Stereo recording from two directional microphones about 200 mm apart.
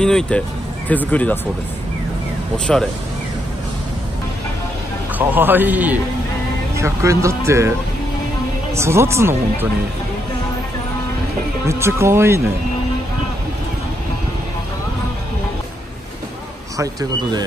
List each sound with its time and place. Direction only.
0.0 s speech: 5° left (ahead or behind)
2.5 s speech: 5° left (ahead or behind)
5.1 s speech: 10° right (ahead or behind)
8.7 s speech: 15° right (ahead or behind)
11.6 s speech: 15° right (ahead or behind)
16.7 s speech: 20° right (ahead or behind)